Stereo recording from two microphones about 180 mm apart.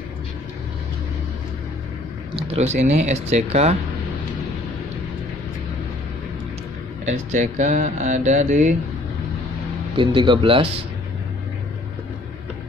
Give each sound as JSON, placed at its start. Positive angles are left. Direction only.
{"t": 2.3, "sound": "speech", "side_deg": -35}
{"t": 7.1, "sound": "speech", "side_deg": -40}
{"t": 9.9, "sound": "speech", "side_deg": -25}